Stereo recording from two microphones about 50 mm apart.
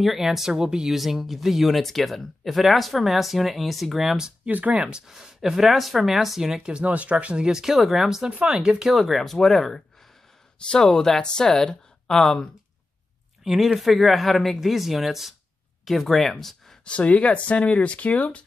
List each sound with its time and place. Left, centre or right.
0.0 s speech: centre
0.9 s speech: centre
4.5 s speech: right
4.7 s speech: centre
6.5 s speech: centre
6.8 s speech: right
7.4 s speech: centre
8.3 s speech: right
8.5 s speech: centre
8.9 s speech: centre
13.4 s a sound: centre
13.7 s speech: centre
16.8 s speech: left